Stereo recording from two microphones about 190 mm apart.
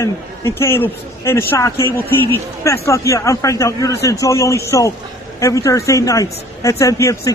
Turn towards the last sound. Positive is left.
turn(degrees=15)  # may be behind; listen again after turning